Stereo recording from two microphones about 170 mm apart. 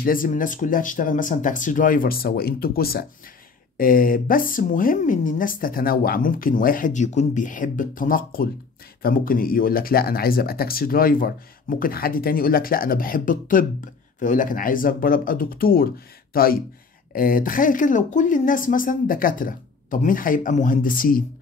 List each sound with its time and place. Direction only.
0.0 s speech: 55° left (ahead or behind)